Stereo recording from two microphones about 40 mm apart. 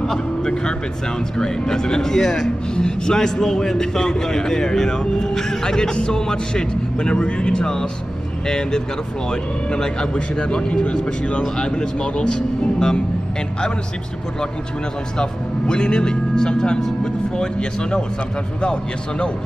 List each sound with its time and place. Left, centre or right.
0.0 s speech: centre
15.1 s speech: centre